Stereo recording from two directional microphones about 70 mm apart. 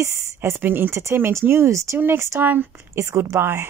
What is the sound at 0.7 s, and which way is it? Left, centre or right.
Speech, right.